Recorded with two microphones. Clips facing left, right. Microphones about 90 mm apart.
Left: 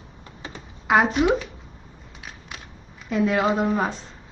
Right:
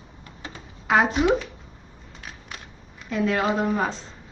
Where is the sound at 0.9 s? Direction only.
10° left (ahead or behind).